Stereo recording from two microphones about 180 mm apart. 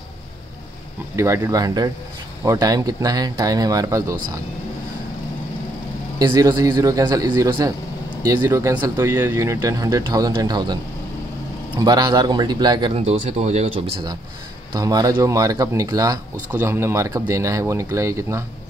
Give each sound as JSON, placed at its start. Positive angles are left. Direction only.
{"t": 1.1, "sound": "speech", "side_deg": -15}
{"t": 6.1, "sound": "speech", "side_deg": -20}
{"t": 11.8, "sound": "speech", "side_deg": -20}
{"t": 14.7, "sound": "speech", "side_deg": -20}